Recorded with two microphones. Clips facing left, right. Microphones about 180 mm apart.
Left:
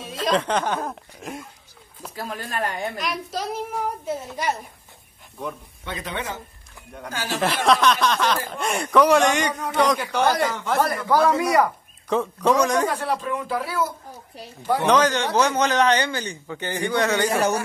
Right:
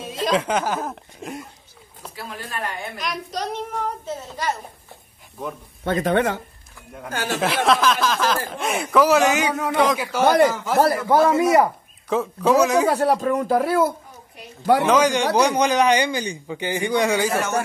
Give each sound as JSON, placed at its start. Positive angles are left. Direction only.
{"t": 0.0, "sound": "speech", "side_deg": 0}
{"t": 2.1, "sound": "speech", "side_deg": 40}
{"t": 3.0, "sound": "a child's voice", "side_deg": 0}
{"t": 5.9, "sound": "speech", "side_deg": -50}
{"t": 7.3, "sound": "speech", "side_deg": 0}
{"t": 11.1, "sound": "speech", "side_deg": -25}
{"t": 12.1, "sound": "speech", "side_deg": -5}
{"t": 12.9, "sound": "speech", "side_deg": -45}
{"t": 14.9, "sound": "a man's voice", "side_deg": -10}